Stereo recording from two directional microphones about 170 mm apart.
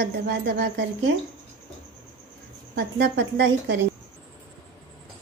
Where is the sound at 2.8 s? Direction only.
75° right (ahead or behind).